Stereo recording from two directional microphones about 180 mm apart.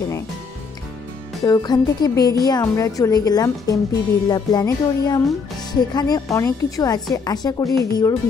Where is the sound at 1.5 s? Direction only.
20° left (ahead or behind).